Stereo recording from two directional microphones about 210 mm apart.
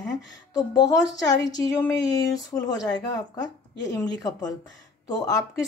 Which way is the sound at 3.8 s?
15° left (ahead or behind).